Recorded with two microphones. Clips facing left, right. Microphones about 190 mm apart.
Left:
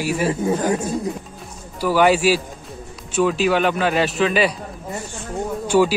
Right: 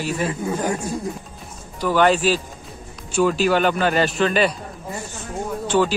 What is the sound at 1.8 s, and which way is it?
A man's voice, 10° left (ahead or behind).